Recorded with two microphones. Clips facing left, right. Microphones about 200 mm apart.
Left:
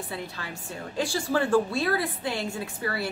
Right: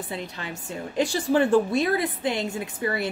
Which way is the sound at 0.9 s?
20° right (ahead or behind).